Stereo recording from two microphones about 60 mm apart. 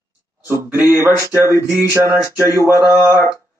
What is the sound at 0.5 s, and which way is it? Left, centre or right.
Speech, right.